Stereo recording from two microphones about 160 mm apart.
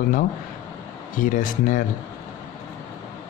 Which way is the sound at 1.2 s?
55° left (ahead or behind).